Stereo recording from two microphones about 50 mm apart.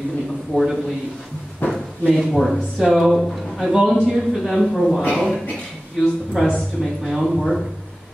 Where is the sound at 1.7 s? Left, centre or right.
Centre.